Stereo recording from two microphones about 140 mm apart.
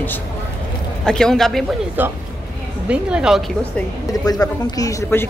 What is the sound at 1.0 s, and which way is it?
Speech, 5° left (ahead or behind).